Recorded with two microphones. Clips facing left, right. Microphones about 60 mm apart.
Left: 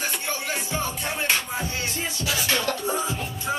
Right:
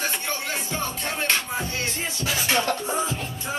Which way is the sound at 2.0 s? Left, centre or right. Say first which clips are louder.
Even; right.